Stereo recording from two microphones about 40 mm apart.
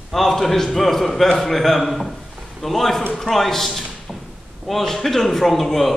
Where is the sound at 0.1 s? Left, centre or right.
Centre.